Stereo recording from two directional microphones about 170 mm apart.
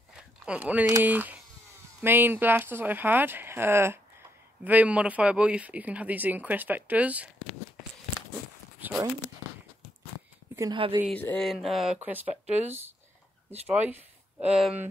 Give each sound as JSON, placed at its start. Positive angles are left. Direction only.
{"t": 0.5, "sound": "speech", "side_deg": -10}
{"t": 10.5, "sound": "a sound", "side_deg": -20}
{"t": 11.1, "sound": "speech", "side_deg": 10}